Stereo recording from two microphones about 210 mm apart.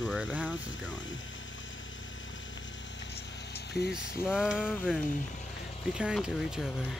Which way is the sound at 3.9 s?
5° right (ahead or behind).